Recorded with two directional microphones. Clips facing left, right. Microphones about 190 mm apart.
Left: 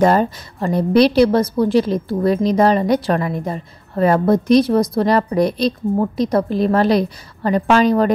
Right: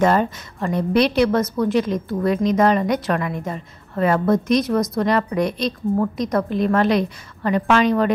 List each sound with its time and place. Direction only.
0.0 s a woman's voice: 35° left (ahead or behind)